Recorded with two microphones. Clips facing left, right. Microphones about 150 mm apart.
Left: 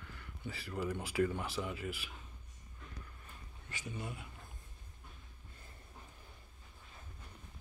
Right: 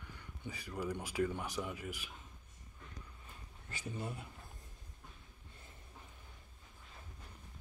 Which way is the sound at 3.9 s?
40° right (ahead or behind).